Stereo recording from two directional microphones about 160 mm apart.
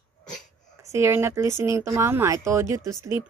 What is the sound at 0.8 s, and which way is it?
Speech, 15° right (ahead or behind).